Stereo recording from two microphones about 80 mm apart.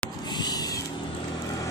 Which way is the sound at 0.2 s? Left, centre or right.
Left.